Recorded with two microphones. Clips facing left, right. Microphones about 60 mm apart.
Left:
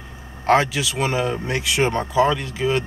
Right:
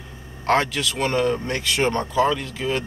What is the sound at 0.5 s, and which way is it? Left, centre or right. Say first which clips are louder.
A man's voice: left 3 dB; centre.